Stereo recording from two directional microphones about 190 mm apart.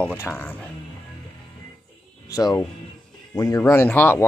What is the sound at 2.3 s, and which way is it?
Speech, 20° left (ahead or behind).